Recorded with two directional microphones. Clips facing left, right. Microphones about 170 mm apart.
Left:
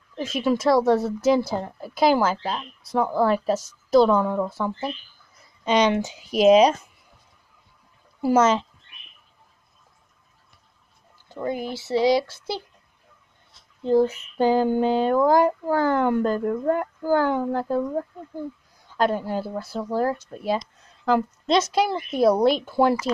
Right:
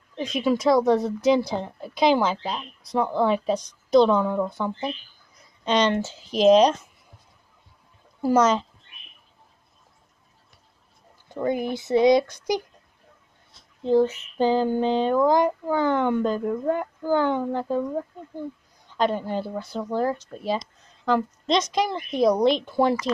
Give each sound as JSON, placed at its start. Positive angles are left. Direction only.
{"t": 0.1, "sound": "a woman's voice", "side_deg": 5}
{"t": 8.2, "sound": "a woman's voice", "side_deg": 5}
{"t": 11.2, "sound": "speech", "side_deg": -20}
{"t": 13.8, "sound": "a woman's voice", "side_deg": 10}
{"t": 16.3, "sound": "speech", "side_deg": -10}
{"t": 17.0, "sound": "speech", "side_deg": 10}
{"t": 18.9, "sound": "a woman's voice", "side_deg": 5}